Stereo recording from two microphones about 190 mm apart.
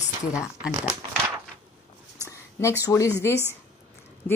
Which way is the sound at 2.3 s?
15° left (ahead or behind).